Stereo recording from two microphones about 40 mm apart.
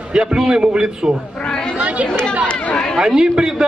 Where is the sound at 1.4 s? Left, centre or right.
Left.